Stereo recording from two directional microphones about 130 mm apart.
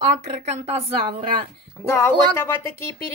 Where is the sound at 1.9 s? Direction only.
20° left (ahead or behind).